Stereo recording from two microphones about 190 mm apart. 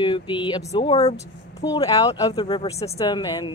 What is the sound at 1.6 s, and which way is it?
Speech, 20° left (ahead or behind).